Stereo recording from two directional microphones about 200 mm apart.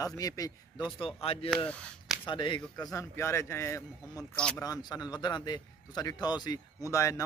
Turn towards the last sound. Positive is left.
turn(degrees=15)  # may be behind; listen again after turning